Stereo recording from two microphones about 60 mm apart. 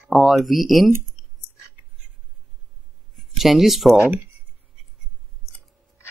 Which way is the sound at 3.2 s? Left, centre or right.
Centre.